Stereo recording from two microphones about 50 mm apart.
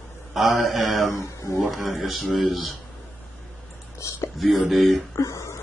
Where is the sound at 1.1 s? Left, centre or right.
Left.